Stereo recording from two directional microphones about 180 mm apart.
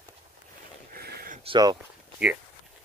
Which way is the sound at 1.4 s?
25° right (ahead or behind).